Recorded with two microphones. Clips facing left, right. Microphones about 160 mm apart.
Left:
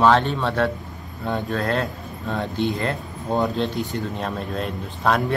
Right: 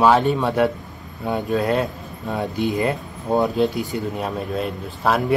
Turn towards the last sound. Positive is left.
turn(degrees=-5)  # may be behind; listen again after turning